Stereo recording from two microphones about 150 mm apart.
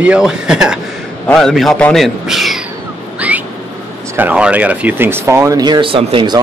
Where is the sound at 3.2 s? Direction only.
10° right (ahead or behind).